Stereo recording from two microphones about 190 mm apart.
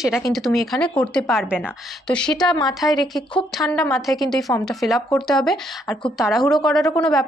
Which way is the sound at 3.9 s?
Centre (ahead or behind).